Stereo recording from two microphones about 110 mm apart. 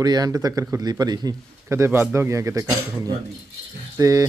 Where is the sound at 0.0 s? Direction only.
35° right (ahead or behind).